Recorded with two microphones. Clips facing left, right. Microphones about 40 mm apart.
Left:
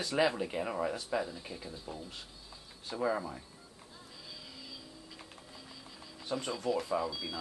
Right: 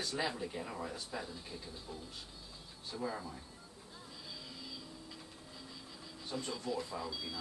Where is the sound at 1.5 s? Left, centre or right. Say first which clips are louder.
Left 4 dB; centre.